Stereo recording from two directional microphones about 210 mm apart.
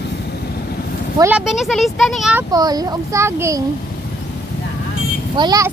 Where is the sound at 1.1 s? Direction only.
10° right (ahead or behind).